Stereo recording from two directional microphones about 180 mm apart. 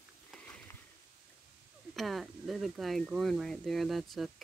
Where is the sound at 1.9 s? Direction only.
Centre (ahead or behind).